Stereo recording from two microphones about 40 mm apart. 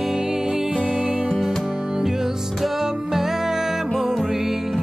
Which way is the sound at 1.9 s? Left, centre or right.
Centre.